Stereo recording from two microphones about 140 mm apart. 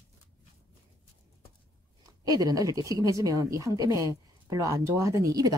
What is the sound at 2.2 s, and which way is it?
Speech, 25° right (ahead or behind).